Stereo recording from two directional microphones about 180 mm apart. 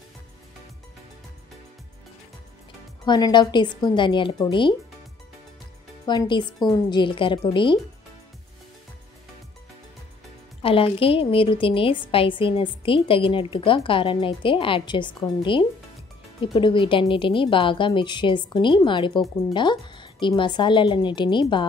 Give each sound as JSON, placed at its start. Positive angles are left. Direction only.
{"t": 3.1, "sound": "speech", "side_deg": 25}
{"t": 6.0, "sound": "speech", "side_deg": 25}
{"t": 10.6, "sound": "speech", "side_deg": 30}